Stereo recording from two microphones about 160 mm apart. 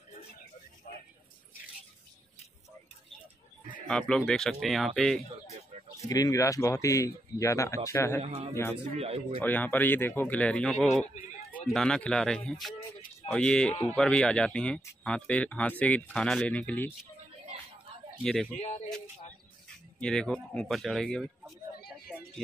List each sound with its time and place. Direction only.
3.7 s speech: 5° left (ahead or behind)
6.0 s speech: 20° left (ahead or behind)
8.2 s a man's voice: 45° right (ahead or behind)
9.4 s speech: 10° left (ahead or behind)
18.2 s speech: 5° left (ahead or behind)
20.0 s speech: 5° left (ahead or behind)